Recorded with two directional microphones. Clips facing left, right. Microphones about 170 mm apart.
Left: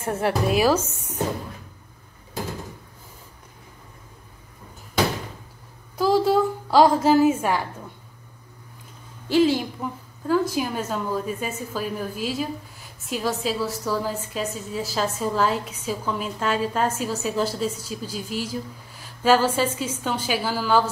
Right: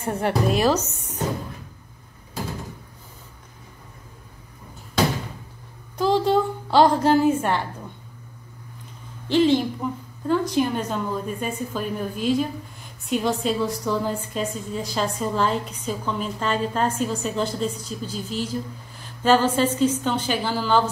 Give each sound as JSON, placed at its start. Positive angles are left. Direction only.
{"t": 0.0, "sound": "a woman's voice", "side_deg": 0}
{"t": 5.9, "sound": "a sound", "side_deg": 5}
{"t": 9.3, "sound": "a woman's voice", "side_deg": 5}